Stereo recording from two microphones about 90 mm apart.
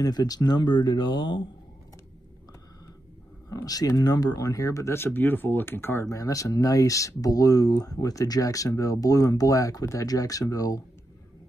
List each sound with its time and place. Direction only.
0.0 s speech: 45° left (ahead or behind)
3.4 s speech: 40° left (ahead or behind)